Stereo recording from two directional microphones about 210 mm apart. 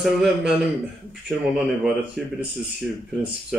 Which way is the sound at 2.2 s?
5° right (ahead or behind).